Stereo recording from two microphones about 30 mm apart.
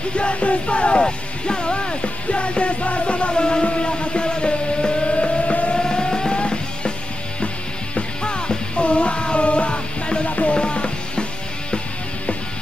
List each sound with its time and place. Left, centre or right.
0.1 s music: left
3.6 s a sound: left
5.8 s a sound: left
6.4 s music: left
8.2 s music: left
10.2 s music: left
10.5 s music: left